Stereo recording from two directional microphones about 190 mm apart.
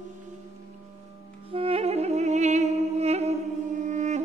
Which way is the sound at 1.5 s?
30° right (ahead or behind).